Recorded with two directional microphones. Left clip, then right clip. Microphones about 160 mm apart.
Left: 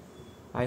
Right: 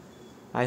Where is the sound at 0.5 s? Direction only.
15° right (ahead or behind).